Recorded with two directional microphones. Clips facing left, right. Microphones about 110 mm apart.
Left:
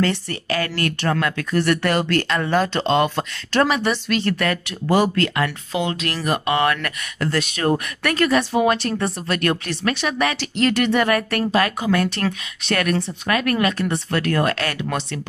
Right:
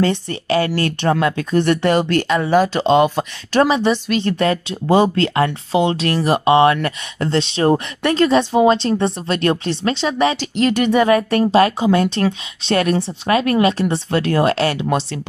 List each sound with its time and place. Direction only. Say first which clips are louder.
0.0 s speech: right 3 dB; 20° right (ahead or behind)